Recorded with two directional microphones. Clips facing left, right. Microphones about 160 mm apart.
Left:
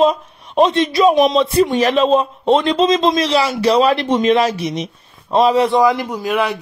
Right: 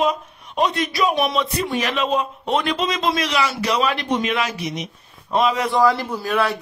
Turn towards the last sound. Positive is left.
turn(degrees=15)  # may be behind; listen again after turning